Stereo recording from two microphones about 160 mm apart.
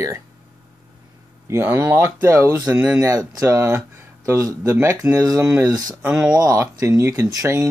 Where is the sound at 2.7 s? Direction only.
5° right (ahead or behind).